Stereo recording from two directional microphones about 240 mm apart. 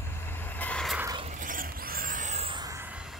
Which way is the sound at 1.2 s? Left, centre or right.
Right.